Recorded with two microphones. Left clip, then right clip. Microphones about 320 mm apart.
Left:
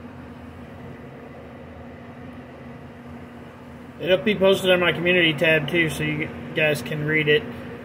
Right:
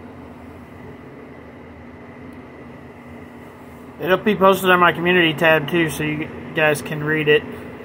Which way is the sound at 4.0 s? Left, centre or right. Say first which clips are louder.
Right 3 dB; centre.